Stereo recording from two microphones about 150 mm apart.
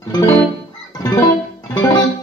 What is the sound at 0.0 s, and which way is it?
Music, 25° left (ahead or behind).